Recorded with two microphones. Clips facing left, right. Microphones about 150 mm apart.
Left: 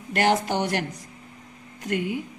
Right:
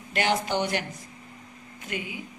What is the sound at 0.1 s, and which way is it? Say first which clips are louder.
Speech: left 3 dB; 60° left (ahead or behind).